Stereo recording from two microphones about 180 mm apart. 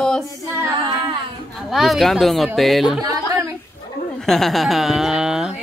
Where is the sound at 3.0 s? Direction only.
20° right (ahead or behind).